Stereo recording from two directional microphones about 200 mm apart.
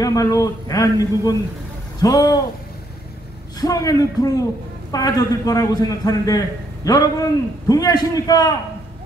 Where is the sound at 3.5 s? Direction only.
20° left (ahead or behind).